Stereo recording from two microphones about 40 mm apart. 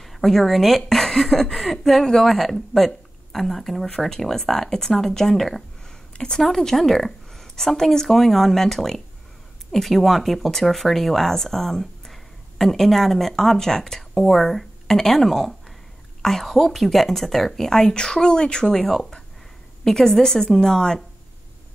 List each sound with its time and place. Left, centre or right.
0.0 s a woman's voice: centre
6.1 s speech: left
6.4 s a woman's voice: centre